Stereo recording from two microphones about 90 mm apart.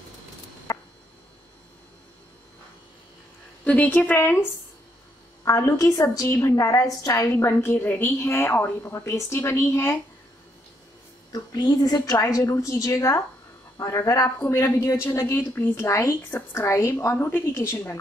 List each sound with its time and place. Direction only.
3.6 s a woman's voice: 20° left (ahead or behind)
5.4 s a woman's voice: 35° left (ahead or behind)
7.2 s a woman's voice: 25° left (ahead or behind)
11.3 s a woman's voice: 45° left (ahead or behind); by 17.9 s 25° left (ahead or behind)